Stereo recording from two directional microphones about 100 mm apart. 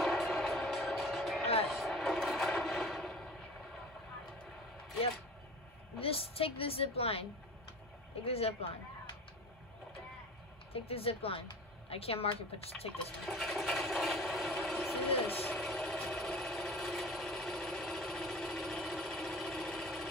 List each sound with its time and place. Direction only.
0.0 s music: centre (ahead or behind)
1.4 s vehicle: 80° left
1.7 s a sound: centre (ahead or behind)
5.9 s a woman's voice: 70° left (ahead or behind)
10.7 s speech: 75° left (ahead or behind)
13.2 s a sound: centre (ahead or behind)
15.2 s engine: 20° left (ahead or behind)
15.5 s engine: centre (ahead or behind)
16.1 s a sound: centre (ahead or behind)